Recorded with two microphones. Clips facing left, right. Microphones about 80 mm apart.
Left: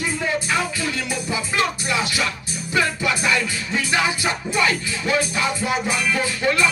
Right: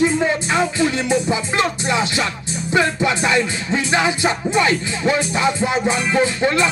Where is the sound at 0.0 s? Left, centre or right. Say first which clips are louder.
Right 7 dB; right.